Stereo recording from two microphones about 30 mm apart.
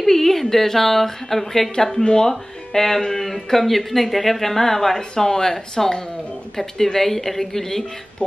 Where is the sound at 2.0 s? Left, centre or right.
Left.